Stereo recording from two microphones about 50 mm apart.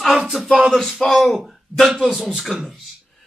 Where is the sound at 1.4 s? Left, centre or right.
Centre.